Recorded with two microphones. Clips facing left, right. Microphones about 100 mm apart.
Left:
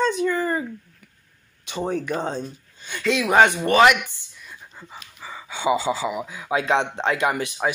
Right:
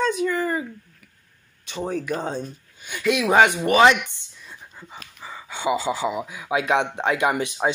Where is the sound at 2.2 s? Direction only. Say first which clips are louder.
Left 1 dB; 10° right (ahead or behind).